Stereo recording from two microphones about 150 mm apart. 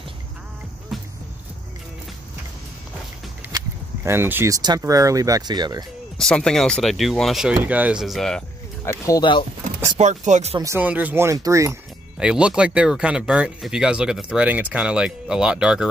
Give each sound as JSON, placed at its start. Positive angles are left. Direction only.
{"t": 0.9, "sound": "music", "side_deg": 0}
{"t": 3.5, "sound": "a sound", "side_deg": -15}
{"t": 4.6, "sound": "speech", "side_deg": -25}
{"t": 6.1, "sound": "speech", "side_deg": 5}
{"t": 8.8, "sound": "speech", "side_deg": 20}
{"t": 9.9, "sound": "speech", "side_deg": -50}
{"t": 10.6, "sound": "speech", "side_deg": -15}
{"t": 12.2, "sound": "speech", "side_deg": -5}